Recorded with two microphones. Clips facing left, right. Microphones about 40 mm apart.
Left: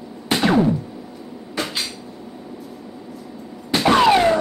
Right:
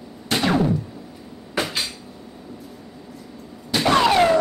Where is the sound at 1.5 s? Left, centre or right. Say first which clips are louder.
Right 1 dB; centre.